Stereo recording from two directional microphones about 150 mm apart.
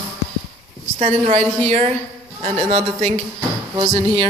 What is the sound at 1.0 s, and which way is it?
A man's voice, 45° right (ahead or behind).